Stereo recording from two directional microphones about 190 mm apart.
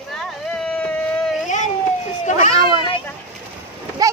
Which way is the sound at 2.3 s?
40° left (ahead or behind).